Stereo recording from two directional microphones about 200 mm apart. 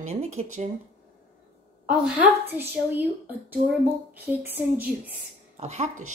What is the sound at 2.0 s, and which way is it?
Speech, 10° right (ahead or behind).